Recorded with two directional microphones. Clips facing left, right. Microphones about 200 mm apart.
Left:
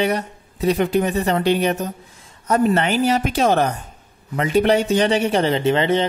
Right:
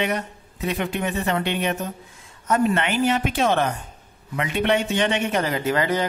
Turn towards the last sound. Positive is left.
turn(degrees=25)  # may be behind; listen again after turning